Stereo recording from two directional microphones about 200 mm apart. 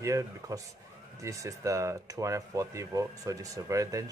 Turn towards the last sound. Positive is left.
turn(degrees=-15)  # may be behind; listen again after turning